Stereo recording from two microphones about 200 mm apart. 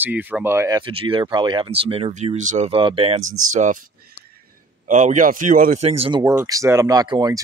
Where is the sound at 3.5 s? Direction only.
40° right (ahead or behind).